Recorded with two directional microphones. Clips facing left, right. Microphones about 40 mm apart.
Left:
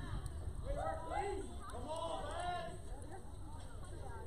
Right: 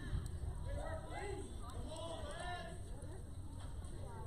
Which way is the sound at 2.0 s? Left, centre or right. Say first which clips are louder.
Left 5 dB; left.